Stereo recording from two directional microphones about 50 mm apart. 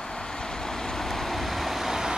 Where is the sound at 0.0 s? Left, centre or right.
Centre.